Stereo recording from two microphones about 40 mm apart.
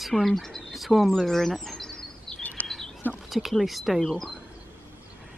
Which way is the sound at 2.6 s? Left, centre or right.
Left.